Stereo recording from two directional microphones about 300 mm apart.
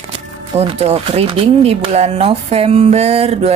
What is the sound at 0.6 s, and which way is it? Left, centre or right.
Speech, right.